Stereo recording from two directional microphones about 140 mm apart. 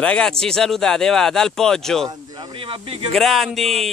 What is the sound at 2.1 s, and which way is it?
Speech, 35° right (ahead or behind).